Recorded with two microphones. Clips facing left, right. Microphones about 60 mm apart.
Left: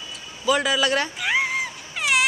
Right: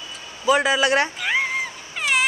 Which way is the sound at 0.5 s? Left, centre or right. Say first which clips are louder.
Right 3 dB; right.